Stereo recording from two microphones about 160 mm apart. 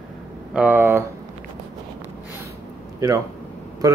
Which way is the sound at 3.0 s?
20° right (ahead or behind).